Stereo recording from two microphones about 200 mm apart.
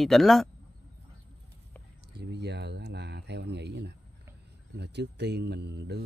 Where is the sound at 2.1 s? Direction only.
55° right (ahead or behind).